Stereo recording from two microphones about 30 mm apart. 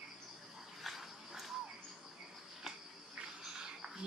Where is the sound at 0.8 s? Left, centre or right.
Centre.